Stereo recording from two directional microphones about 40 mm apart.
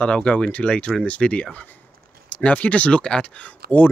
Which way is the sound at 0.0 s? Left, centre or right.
Left.